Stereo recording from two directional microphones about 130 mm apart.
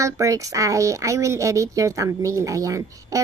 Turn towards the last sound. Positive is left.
turn(degrees=-25)  # may be behind; listen again after turning